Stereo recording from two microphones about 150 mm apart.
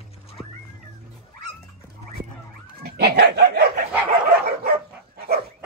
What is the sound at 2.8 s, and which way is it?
Dog, 90° right.